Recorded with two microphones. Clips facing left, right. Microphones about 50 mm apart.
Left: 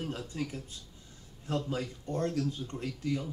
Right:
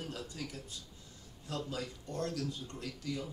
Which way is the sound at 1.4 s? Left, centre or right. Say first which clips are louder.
Left 6 dB; left.